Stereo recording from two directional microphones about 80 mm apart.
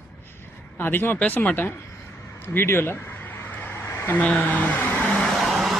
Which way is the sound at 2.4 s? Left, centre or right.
Left.